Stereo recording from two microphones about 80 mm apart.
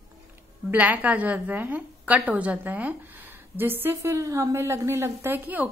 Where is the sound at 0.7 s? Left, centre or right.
Centre.